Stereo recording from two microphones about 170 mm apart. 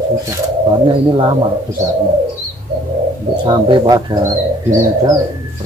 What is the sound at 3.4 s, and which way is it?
Speech, 30° right (ahead or behind).